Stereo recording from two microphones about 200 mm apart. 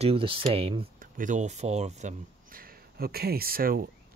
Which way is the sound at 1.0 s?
40° right (ahead or behind).